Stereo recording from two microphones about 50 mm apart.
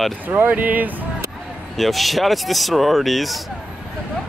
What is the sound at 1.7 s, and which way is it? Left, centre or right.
Speech, centre.